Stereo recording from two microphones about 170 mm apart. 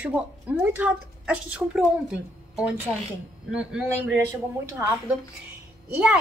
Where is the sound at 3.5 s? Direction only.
5° right (ahead or behind).